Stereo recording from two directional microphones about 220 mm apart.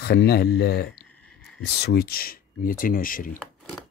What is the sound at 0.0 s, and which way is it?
Speech, 45° left (ahead or behind).